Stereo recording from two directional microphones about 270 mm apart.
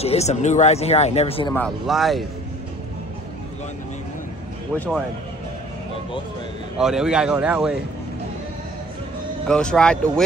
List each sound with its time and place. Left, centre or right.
0.0 s speech: left
1.5 s speech: centre
6.8 s speech: centre
9.5 s speech: centre